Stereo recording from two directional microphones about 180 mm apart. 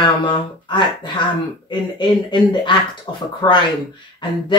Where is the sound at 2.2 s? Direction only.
25° left (ahead or behind).